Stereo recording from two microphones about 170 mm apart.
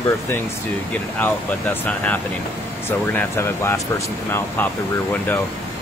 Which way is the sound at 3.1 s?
15° left (ahead or behind).